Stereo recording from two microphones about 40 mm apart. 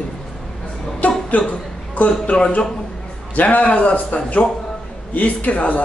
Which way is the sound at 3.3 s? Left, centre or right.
Left.